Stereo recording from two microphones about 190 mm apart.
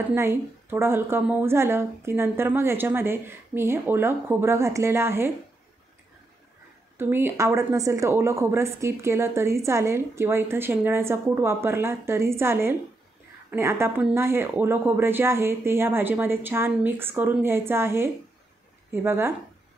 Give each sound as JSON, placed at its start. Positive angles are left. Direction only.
{"t": 0.1, "sound": "a woman's voice", "side_deg": -15}
{"t": 7.0, "sound": "a woman's voice", "side_deg": -10}